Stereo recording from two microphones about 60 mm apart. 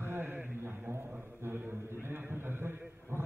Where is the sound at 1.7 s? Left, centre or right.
Right.